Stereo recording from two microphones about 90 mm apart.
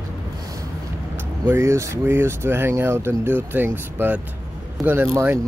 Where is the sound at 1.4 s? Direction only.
30° right (ahead or behind).